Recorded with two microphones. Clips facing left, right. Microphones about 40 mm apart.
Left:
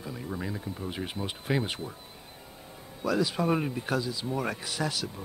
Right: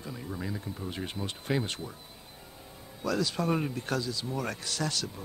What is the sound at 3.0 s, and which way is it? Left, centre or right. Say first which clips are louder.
Speech: left 2 dB; centre.